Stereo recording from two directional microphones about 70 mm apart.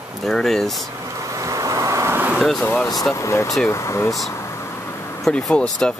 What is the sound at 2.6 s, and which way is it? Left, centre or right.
Speech, left.